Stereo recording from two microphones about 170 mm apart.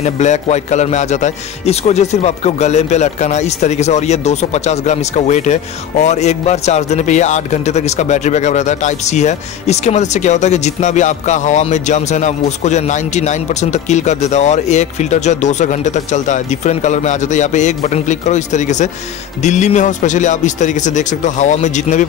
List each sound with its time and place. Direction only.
0.0 s a man's voice: 45° left (ahead or behind)